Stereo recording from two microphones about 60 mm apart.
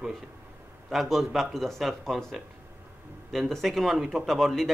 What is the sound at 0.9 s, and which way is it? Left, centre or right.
A man's voice, centre.